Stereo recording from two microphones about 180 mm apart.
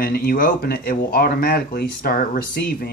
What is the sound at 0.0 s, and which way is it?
Speech, 55° left (ahead or behind).